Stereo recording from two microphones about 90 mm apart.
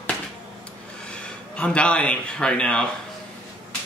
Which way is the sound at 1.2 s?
10° left (ahead or behind).